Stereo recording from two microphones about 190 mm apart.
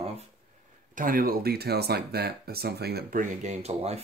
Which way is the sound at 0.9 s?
45° right (ahead or behind).